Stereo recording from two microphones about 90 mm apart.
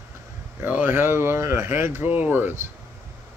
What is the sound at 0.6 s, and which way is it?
Speech, 20° right (ahead or behind).